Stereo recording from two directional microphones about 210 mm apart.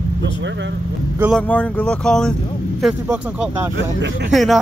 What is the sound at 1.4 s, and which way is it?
Speech, 5° left (ahead or behind).